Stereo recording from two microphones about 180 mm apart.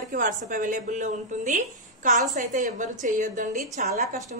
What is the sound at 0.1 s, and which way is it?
A woman's voice, 50° right (ahead or behind).